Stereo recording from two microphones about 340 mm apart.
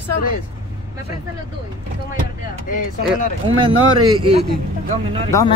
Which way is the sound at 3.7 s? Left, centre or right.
Right.